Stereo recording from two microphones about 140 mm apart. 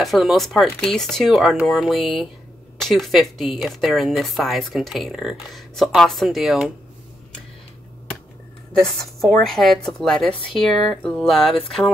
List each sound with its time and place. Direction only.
0.0 s speech: centre (ahead or behind)
9.4 s speech: centre (ahead or behind)